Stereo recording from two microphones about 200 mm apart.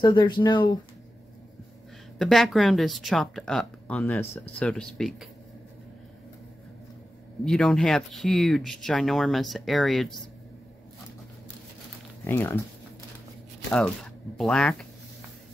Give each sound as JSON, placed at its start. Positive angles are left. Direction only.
{"t": 0.0, "sound": "speech", "side_deg": 20}
{"t": 2.1, "sound": "speech", "side_deg": 0}
{"t": 7.4, "sound": "speech", "side_deg": 5}
{"t": 12.3, "sound": "speech", "side_deg": 10}
{"t": 13.7, "sound": "speech", "side_deg": 5}